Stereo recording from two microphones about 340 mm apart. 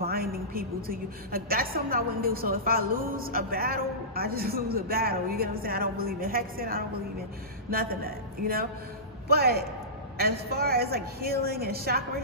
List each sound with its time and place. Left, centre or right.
0.0 s a woman's voice: right
9.3 s a woman's voice: right